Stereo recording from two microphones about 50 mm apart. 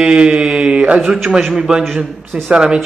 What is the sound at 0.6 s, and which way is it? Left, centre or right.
Mantra, right.